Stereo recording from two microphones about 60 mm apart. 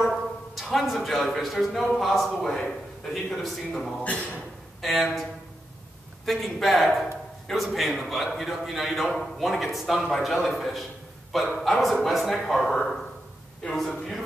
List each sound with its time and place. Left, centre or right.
0.6 s a man's voice: centre
4.0 s speech: left
4.8 s a man's voice: centre
6.2 s a man's voice: centre